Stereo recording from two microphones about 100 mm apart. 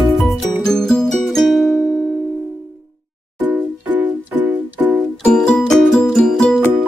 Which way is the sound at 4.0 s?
15° right (ahead or behind).